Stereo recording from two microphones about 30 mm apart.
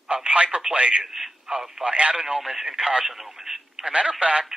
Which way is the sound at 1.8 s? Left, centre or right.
Right.